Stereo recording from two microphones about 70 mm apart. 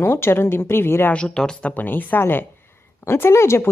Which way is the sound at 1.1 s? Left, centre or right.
Centre.